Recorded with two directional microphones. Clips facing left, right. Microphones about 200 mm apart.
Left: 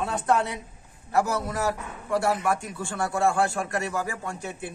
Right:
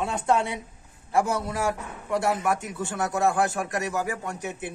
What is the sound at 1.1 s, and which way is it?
Speech, 25° right (ahead or behind).